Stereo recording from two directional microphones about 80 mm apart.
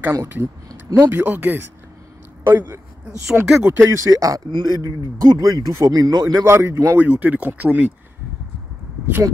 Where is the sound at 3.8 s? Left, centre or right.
Right.